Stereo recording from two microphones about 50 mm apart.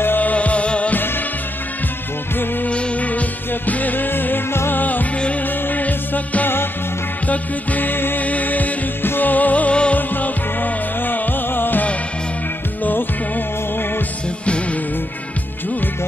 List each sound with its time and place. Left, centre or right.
0.0 s music: left
0.3 s music: left
2.6 s music: left
5.7 s music: left
8.2 s music: left
9.9 s music: left